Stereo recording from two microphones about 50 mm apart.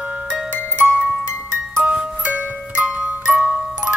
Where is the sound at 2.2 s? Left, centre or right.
Right.